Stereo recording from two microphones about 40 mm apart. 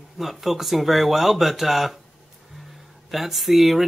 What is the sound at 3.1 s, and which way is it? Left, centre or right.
Speech, centre.